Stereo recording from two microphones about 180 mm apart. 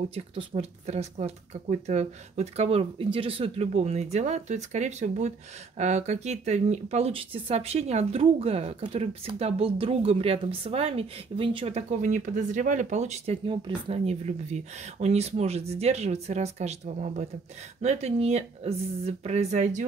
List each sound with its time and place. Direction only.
0.1 s speech: 30° right (ahead or behind)